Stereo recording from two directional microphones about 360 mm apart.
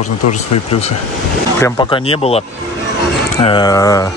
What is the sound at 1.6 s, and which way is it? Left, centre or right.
Speech, centre.